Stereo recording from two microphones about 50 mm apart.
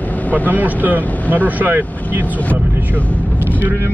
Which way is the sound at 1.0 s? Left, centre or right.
Left.